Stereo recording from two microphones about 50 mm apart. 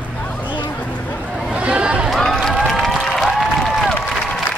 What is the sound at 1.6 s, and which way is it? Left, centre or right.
Speech, right.